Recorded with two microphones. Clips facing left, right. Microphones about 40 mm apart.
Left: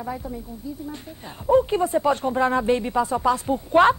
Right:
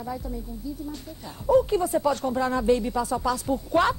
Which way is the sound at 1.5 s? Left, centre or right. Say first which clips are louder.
Left 2 dB; left.